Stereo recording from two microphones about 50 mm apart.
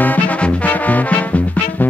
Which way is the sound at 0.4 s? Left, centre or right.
Left.